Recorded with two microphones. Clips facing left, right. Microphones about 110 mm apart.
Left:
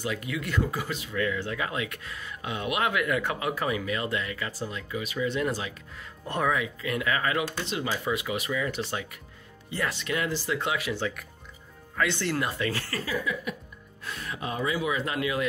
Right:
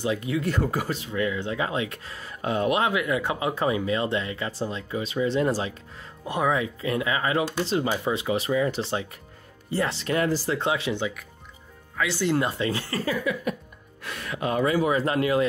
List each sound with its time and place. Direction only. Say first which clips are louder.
0.0 s speech: right 6 dB; 25° right (ahead or behind)
1.2 s speech: right 3 dB; 20° right (ahead or behind); by 2.8 s 40° right (ahead or behind)
2.8 s speech: right 2 dB; 20° right (ahead or behind)
6.2 s speech: right 2 dB; 15° right (ahead or behind)
6.5 s speech: right 3 dB; 30° right (ahead or behind)
12.0 s speech: right 1 dB; 5° right (ahead or behind)
12.3 s speech: right 4 dB; 25° right (ahead or behind)
13.3 s speech: right 5 dB; 65° right (ahead or behind); by 15.4 s 40° right (ahead or behind)